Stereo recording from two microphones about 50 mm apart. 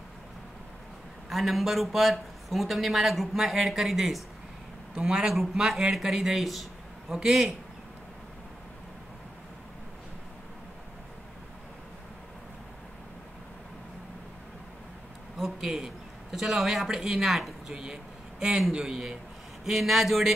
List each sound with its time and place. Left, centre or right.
1.3 s speech: centre
4.9 s a man's voice: centre
5.9 s a man's voice: centre
7.2 s a man's voice: centre
15.3 s a man's voice: centre